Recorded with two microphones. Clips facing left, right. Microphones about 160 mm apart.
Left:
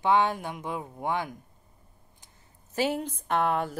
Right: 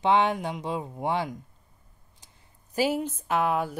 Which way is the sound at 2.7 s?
10° right (ahead or behind).